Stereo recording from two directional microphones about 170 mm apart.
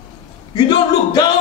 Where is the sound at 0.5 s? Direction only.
25° left (ahead or behind).